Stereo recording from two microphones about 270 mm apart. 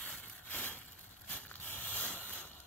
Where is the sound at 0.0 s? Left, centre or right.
Centre.